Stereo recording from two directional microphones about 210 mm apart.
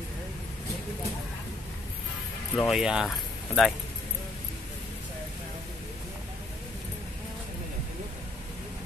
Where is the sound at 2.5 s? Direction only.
Centre (ahead or behind).